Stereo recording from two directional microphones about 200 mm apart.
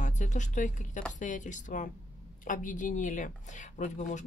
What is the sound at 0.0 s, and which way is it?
Speech, 40° left (ahead or behind).